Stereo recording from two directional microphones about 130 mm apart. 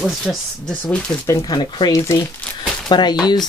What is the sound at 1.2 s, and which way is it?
Speech, 25° left (ahead or behind).